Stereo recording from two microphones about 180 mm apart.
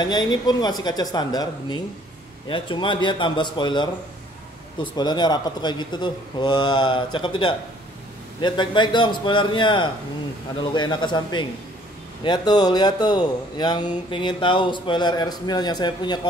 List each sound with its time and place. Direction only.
0.0 s speech: 25° left (ahead or behind)
4.9 s speech: 25° left (ahead or behind)